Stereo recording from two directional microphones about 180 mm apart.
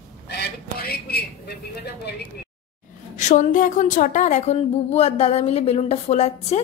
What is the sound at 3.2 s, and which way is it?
A woman's voice, 45° left (ahead or behind).